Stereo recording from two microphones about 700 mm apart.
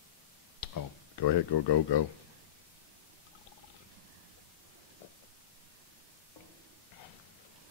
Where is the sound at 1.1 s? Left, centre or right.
Left.